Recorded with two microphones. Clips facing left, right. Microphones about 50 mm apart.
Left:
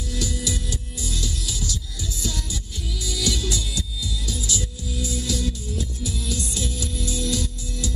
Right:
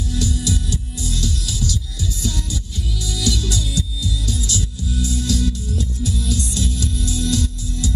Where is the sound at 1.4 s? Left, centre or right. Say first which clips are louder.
Right 5 dB; right.